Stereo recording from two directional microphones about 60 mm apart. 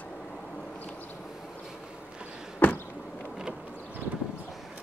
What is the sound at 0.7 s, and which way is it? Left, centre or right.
Vehicle, left.